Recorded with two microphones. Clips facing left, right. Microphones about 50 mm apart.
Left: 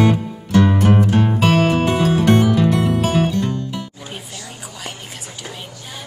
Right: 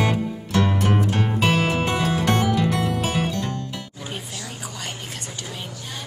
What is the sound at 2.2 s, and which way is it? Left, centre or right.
Music, left.